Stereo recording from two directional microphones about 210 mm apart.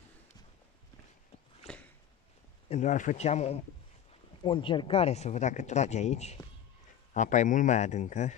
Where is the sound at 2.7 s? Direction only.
35° left (ahead or behind).